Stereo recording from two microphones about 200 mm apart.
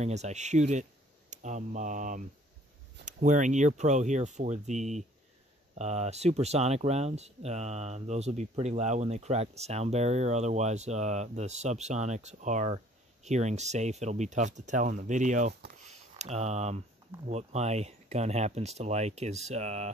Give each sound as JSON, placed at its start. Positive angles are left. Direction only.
{"t": 0.0, "sound": "speech", "side_deg": -35}
{"t": 15.8, "sound": "a sound", "side_deg": -35}
{"t": 17.3, "sound": "speech", "side_deg": -35}